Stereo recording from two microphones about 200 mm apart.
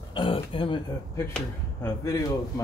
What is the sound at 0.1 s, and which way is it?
Speech, 25° left (ahead or behind).